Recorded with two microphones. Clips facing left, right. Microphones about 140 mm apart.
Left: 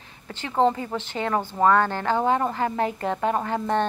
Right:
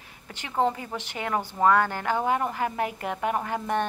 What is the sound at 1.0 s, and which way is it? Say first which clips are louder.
A woman's voice: left 4 dB; 15° right (ahead or behind).